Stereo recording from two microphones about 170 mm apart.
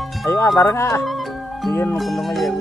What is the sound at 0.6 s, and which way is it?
Speech, 15° left (ahead or behind).